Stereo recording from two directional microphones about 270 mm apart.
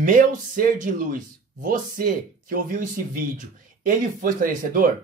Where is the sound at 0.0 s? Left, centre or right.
Right.